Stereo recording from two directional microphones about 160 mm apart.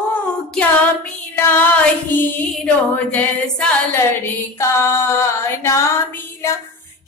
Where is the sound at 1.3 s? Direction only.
10° left (ahead or behind).